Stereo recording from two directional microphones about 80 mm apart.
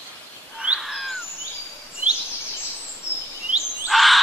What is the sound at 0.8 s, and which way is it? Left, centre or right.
Bird, centre.